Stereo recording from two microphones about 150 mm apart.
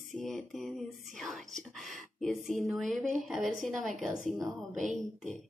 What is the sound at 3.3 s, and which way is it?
Speech, 55° right (ahead or behind).